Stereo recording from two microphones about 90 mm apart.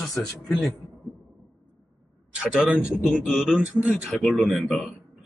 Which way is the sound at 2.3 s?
10° right (ahead or behind).